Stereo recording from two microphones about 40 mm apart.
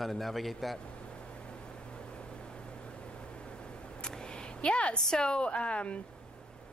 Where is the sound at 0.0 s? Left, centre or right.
Centre.